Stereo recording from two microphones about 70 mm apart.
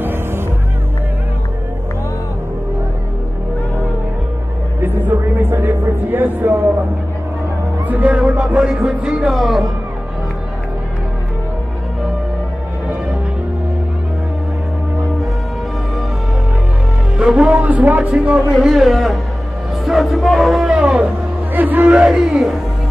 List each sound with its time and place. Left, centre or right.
0.0 s music: right
4.8 s a sound: right
7.9 s speech: centre
8.6 s music: centre
17.2 s a sound: centre
19.8 s music: centre
20.7 s music: centre
21.5 s speech: right
22.0 s speech: centre